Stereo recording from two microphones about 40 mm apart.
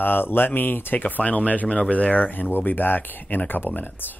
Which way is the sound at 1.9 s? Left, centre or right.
Left.